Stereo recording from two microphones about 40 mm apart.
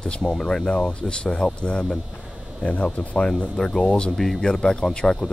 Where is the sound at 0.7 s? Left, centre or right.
Left.